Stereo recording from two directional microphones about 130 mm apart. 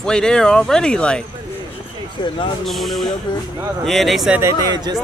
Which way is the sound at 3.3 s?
35° left (ahead or behind).